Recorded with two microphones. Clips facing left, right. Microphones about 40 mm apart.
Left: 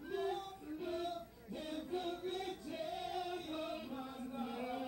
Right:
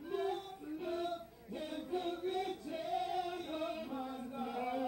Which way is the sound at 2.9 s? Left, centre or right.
Centre.